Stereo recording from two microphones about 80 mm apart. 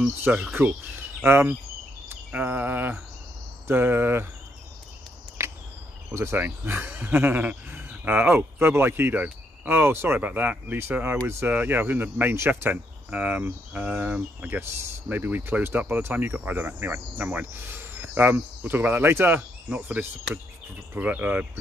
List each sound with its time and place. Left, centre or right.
0.0 s speech: right
2.0 s cricket: right
3.6 s speech: right
5.4 s a sound: right
6.1 s speech: right